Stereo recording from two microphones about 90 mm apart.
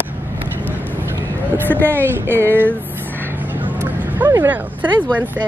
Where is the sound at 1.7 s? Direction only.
25° right (ahead or behind).